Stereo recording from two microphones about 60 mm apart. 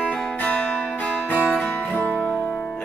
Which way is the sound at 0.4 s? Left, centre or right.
Left.